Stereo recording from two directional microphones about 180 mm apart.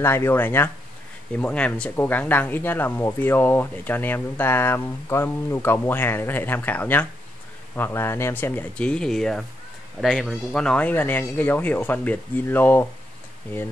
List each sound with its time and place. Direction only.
0.0 s speech: 15° left (ahead or behind)